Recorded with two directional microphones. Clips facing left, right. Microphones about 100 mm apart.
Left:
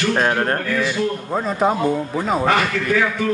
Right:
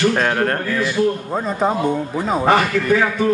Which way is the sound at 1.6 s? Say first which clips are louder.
Left 1 dB; centre (ahead or behind).